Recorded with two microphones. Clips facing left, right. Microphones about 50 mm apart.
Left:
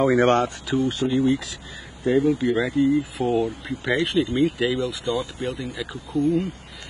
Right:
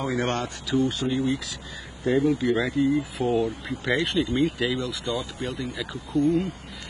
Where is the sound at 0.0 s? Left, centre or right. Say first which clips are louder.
Left 9 dB; left.